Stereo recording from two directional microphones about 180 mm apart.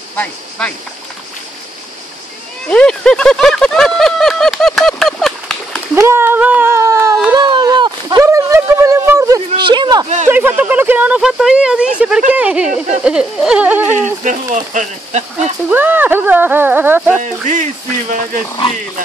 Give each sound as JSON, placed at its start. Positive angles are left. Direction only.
{"t": 0.1, "sound": "speech", "side_deg": 5}
{"t": 2.7, "sound": "a sound", "side_deg": 5}
{"t": 5.9, "sound": "a sound", "side_deg": -15}
{"t": 9.6, "sound": "speech", "side_deg": -25}
{"t": 10.0, "sound": "speech", "side_deg": -40}
{"t": 10.3, "sound": "speech", "side_deg": -10}
{"t": 14.2, "sound": "speech", "side_deg": -45}
{"t": 15.7, "sound": "speech", "side_deg": -10}
{"t": 17.2, "sound": "speech", "side_deg": -45}